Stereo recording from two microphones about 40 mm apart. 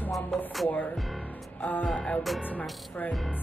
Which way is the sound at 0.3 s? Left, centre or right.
Centre.